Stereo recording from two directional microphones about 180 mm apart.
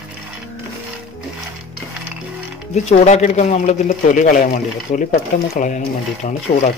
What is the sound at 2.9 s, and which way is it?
Speech, 40° left (ahead or behind).